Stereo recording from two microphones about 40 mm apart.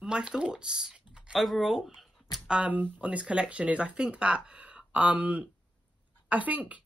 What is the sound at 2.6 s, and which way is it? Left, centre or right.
Speech, right.